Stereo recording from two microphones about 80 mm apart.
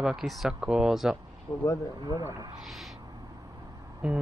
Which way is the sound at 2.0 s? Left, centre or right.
Right.